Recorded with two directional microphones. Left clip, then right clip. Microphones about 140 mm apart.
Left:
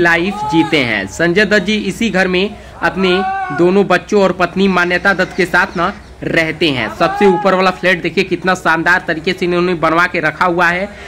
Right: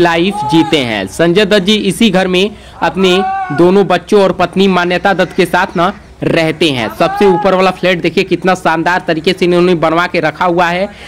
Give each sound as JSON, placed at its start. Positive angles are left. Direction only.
{"t": 0.0, "sound": "a man's voice", "side_deg": -35}
{"t": 3.2, "sound": "speech", "side_deg": 0}
{"t": 3.5, "sound": "a man's voice", "side_deg": -30}